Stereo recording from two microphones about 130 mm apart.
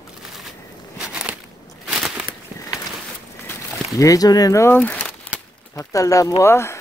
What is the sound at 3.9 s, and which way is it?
Speech, 25° left (ahead or behind).